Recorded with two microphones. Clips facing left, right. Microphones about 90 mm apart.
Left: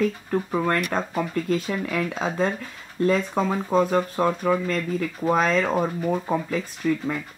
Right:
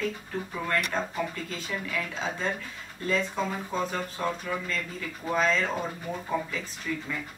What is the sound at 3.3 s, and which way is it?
Speech, 80° left.